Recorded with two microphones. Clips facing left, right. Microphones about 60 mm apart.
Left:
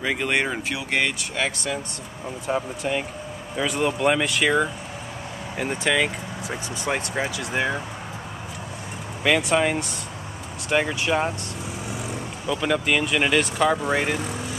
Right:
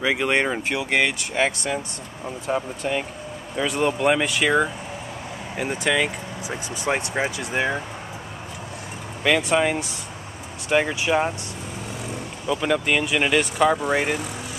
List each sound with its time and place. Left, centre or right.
0.0 s speech: right
1.0 s speech: right
2.2 s speech: centre
6.9 s speech: centre
9.2 s speech: centre
12.4 s speech: centre